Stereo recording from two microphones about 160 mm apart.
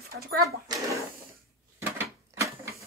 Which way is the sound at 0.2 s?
75° right (ahead or behind).